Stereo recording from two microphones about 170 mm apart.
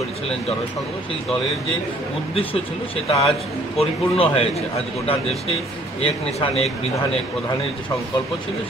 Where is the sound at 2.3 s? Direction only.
35° left (ahead or behind).